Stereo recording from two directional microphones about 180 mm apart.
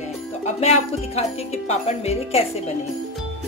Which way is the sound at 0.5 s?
35° left (ahead or behind).